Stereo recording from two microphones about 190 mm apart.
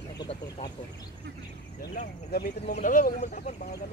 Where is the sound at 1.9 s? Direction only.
45° left (ahead or behind).